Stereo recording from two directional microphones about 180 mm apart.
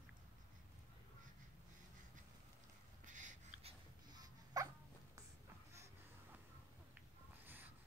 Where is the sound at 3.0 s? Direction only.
45° right (ahead or behind).